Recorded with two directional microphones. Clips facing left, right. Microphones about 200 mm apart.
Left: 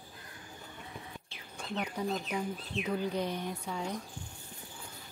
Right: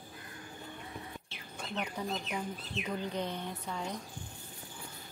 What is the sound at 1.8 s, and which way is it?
Speech, 10° left (ahead or behind).